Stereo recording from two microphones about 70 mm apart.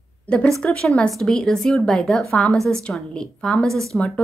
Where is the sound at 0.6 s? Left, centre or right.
Centre.